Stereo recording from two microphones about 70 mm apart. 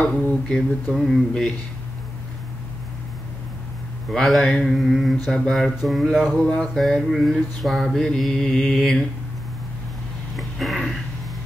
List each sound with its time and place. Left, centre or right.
0.0 s mantra: centre
0.9 s speech: centre
4.1 s speech: centre
6.4 s speech: centre
7.6 s mantra: centre
10.3 s a sound: centre